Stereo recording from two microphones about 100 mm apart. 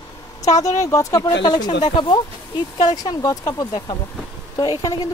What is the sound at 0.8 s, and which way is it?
Speech, 35° left (ahead or behind).